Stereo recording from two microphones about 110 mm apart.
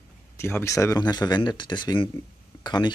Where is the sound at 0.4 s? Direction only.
20° left (ahead or behind).